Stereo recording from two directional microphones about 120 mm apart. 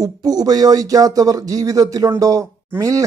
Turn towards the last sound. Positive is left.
turn(degrees=-30)  # may be behind; listen again after turning